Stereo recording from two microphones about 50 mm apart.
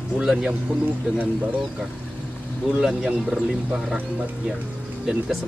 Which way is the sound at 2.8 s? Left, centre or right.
Centre.